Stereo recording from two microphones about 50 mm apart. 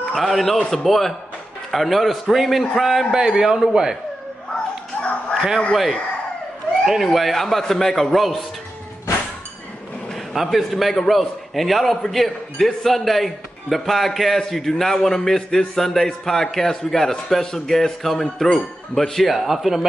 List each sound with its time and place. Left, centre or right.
0.1 s a man's voice: centre
3.2 s a man's voice: centre
4.9 s a sound: left
5.7 s a man's voice: centre
10.1 s a man's voice: centre